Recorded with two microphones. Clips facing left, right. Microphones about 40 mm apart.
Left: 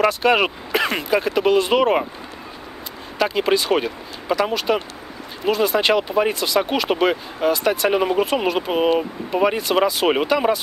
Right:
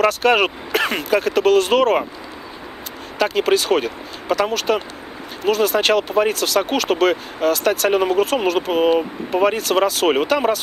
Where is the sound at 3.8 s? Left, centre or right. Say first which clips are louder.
Right 1 dB; centre.